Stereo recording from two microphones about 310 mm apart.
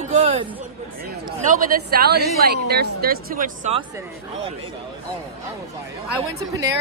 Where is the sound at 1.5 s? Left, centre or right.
Right.